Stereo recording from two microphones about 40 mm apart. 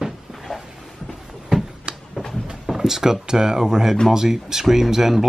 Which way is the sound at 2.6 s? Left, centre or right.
Centre.